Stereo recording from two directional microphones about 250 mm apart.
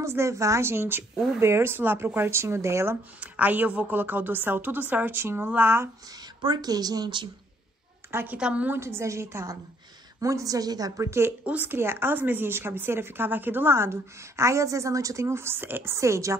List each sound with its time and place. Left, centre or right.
0.0 s a woman's voice: centre